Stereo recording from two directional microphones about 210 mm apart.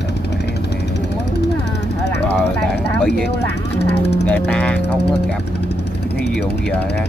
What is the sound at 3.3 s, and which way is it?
Speech, 50° left (ahead or behind).